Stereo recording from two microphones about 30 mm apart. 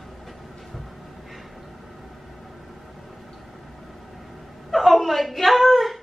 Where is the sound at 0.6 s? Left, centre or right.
Centre.